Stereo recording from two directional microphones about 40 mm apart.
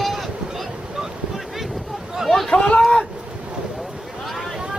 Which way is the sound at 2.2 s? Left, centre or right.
Centre.